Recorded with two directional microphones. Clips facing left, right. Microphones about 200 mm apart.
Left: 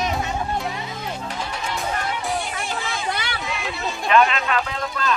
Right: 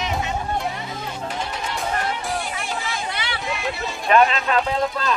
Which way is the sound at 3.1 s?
45° left (ahead or behind).